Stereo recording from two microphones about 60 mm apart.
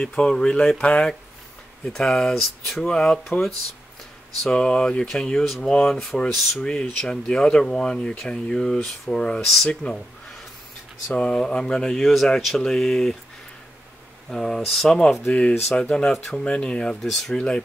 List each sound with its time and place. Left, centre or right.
0.0 s speech: centre
1.9 s speech: centre
4.5 s speech: centre
9.8 s speech: left
11.1 s speech: centre
14.3 s speech: centre
15.3 s speech: centre
17.0 s speech: centre
17.4 s speech: centre